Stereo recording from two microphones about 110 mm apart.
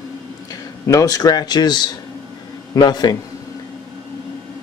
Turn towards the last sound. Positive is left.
turn(degrees=40)  # may be behind; listen again after turning